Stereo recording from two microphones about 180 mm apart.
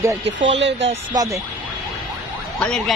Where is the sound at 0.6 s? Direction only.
80° right.